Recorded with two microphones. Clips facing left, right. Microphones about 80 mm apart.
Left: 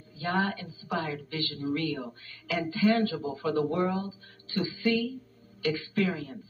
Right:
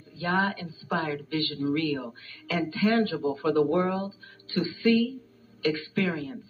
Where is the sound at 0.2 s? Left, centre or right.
Right.